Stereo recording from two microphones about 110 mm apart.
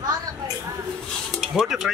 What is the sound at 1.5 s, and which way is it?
Speech, 5° right (ahead or behind).